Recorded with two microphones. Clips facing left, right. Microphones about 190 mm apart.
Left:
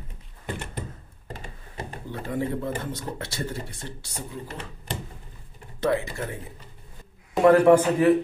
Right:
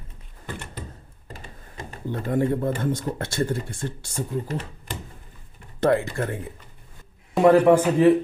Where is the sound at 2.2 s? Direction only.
50° right (ahead or behind).